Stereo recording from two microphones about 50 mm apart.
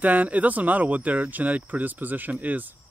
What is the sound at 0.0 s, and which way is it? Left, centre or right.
Speech, right.